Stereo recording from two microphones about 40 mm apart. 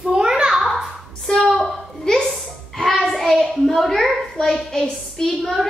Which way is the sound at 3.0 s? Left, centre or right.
Centre.